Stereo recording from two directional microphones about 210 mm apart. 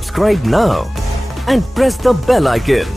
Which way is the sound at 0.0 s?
Centre (ahead or behind).